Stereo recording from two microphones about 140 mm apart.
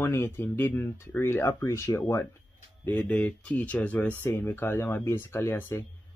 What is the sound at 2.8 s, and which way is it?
Speech, 10° left (ahead or behind).